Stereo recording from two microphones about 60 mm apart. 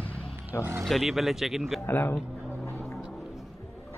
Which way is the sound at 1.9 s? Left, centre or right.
Left.